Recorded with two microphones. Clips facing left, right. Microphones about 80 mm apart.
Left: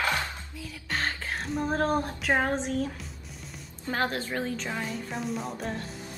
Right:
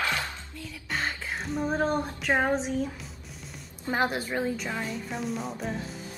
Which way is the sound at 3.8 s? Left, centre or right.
Centre.